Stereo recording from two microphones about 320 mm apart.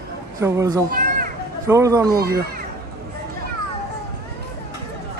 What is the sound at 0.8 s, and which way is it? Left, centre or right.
Children playing, right.